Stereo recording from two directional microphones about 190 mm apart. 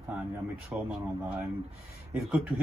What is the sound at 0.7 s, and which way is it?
Speech, 10° right (ahead or behind).